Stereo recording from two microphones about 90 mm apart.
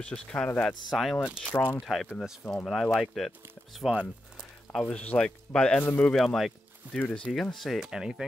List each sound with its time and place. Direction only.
0.0 s speech: 10° left (ahead or behind)
1.2 s speech: 10° right (ahead or behind)
1.5 s speech: 25° left (ahead or behind)
1.8 s speech: centre (ahead or behind)
4.7 s speech: 15° left (ahead or behind)
6.1 s speech: centre (ahead or behind)
6.9 s speech: 15° left (ahead or behind)
7.3 s speech: centre (ahead or behind)